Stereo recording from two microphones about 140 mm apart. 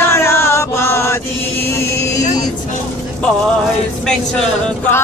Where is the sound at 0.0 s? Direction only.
15° left (ahead or behind).